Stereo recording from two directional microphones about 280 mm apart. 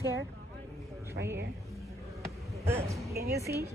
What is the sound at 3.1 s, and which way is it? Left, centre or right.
Speech, right.